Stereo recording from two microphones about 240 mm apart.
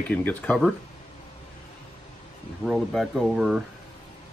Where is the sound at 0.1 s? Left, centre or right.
Centre.